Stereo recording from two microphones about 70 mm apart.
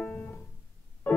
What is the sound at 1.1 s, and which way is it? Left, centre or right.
Organ, left.